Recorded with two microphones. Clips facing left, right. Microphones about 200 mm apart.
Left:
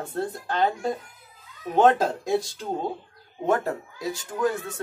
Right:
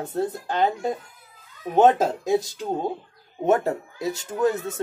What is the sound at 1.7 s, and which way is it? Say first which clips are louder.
Speech: right 2 dB; 20° right (ahead or behind).